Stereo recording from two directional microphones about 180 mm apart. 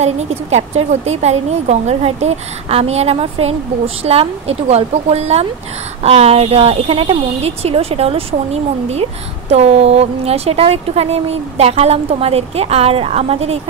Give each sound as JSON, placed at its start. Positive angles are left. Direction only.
{"t": 0.0, "sound": "a woman's voice", "side_deg": -35}
{"t": 9.5, "sound": "a woman's voice", "side_deg": -35}